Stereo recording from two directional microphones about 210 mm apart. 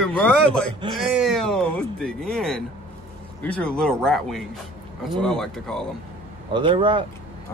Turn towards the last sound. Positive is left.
turn(degrees=-25)  # may be behind; listen again after turning